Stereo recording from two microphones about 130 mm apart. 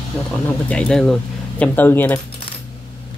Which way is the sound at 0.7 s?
10° left (ahead or behind).